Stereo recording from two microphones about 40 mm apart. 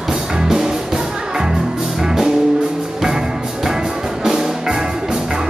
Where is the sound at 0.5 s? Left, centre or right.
Centre.